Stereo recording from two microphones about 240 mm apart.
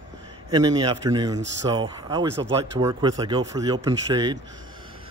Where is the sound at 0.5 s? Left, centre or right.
Centre.